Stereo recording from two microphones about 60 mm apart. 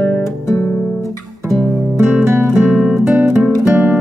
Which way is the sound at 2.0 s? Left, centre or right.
Right.